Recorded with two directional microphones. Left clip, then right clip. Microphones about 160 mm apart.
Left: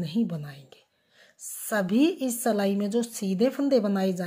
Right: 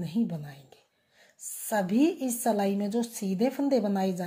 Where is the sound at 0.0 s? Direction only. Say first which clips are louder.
Left 2 dB; 30° left (ahead or behind).